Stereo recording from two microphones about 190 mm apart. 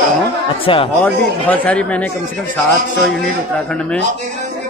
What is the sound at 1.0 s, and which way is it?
Speech, 5° left (ahead or behind).